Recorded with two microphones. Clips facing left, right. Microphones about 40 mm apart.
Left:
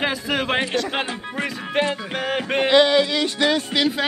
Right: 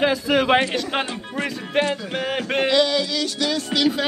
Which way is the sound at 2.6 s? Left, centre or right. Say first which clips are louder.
Left 4 dB; left.